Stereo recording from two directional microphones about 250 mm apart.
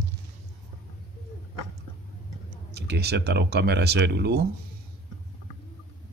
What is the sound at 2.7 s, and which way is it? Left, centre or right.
Speech, right.